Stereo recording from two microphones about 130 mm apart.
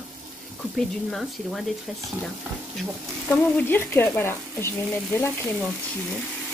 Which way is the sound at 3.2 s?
15° left (ahead or behind).